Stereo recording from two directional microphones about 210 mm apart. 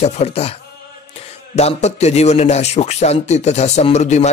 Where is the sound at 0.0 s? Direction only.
30° left (ahead or behind).